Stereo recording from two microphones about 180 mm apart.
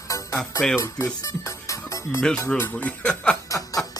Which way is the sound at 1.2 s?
15° left (ahead or behind).